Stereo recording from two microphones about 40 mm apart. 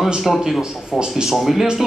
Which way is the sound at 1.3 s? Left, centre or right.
Centre.